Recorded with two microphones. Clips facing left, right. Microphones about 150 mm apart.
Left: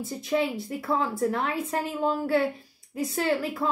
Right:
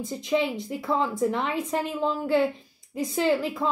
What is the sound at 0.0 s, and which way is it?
A woman's voice, 5° left (ahead or behind).